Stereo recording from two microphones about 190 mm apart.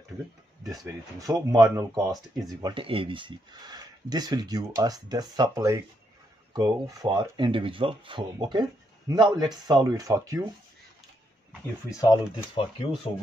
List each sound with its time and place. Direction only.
0.7 s speech: 15° right (ahead or behind)
11.9 s speech: 15° left (ahead or behind)